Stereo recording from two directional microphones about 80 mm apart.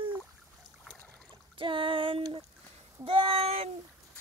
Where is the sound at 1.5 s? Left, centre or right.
Right.